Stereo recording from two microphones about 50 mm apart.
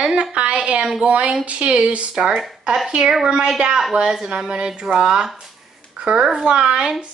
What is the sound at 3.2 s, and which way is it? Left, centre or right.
Speech, centre.